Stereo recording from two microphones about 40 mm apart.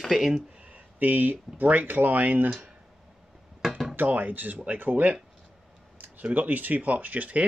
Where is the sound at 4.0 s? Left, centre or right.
Right.